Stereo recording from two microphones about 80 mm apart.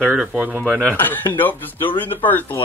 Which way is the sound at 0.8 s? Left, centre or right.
Left.